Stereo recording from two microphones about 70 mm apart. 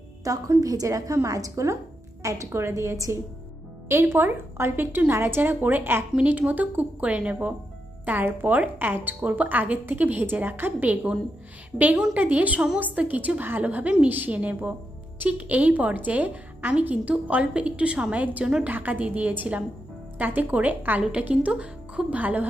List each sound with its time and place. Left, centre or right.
0.2 s a woman's voice: right
3.9 s a woman's voice: right